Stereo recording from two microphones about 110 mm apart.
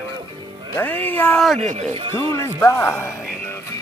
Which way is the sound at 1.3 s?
Centre (ahead or behind).